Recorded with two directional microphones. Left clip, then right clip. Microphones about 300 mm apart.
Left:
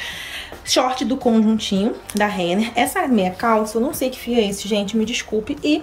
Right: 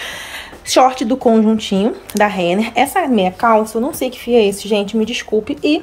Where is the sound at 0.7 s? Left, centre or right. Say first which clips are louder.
Right 7 dB; centre.